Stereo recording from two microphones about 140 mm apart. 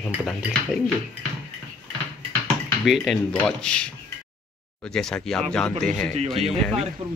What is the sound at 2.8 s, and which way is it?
Speech, centre (ahead or behind).